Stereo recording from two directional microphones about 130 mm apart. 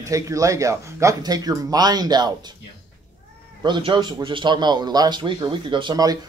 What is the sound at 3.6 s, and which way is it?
A man's voice, 35° right (ahead or behind).